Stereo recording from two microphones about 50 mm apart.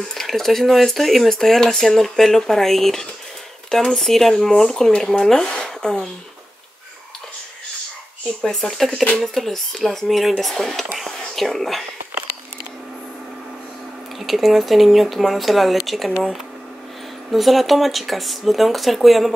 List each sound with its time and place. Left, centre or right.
0.0 s speech: centre
8.4 s speech: centre
14.2 s speech: centre
17.3 s speech: centre